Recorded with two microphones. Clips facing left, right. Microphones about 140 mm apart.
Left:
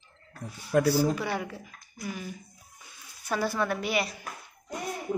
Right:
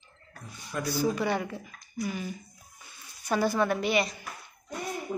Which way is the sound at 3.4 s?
Centre (ahead or behind).